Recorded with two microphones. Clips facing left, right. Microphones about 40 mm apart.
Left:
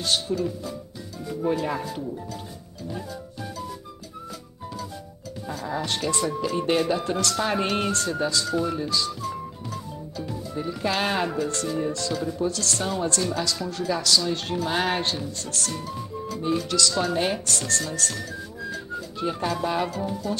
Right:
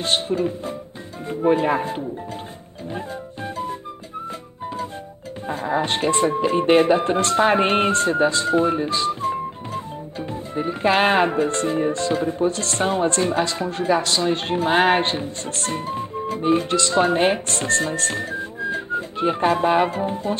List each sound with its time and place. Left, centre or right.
0.0 s speech: right
5.5 s speech: right